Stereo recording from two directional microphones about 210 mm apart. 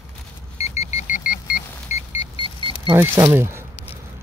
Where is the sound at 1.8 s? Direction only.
30° left (ahead or behind).